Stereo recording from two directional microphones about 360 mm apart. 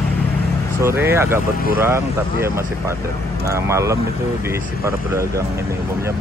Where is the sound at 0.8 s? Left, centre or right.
Centre.